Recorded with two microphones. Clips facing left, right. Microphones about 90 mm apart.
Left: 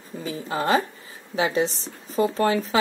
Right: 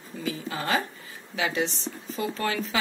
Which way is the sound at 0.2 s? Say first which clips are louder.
Left 4 dB; 35° left (ahead or behind).